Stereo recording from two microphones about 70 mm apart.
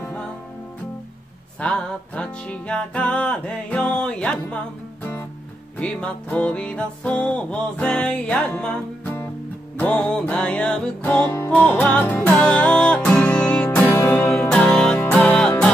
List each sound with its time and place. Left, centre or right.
1.6 s music: centre
5.8 s music: centre